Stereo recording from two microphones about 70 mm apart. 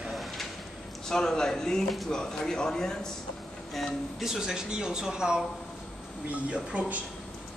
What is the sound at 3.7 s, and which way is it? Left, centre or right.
Speech, centre.